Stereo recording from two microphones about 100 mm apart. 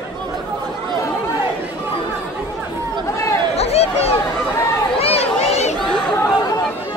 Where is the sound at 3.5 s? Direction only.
90° left.